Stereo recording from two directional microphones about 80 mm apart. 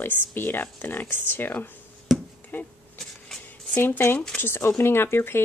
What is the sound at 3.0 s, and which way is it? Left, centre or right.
Vehicle, centre.